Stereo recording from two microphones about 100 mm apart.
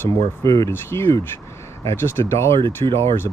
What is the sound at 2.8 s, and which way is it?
Speech, 65° right (ahead or behind).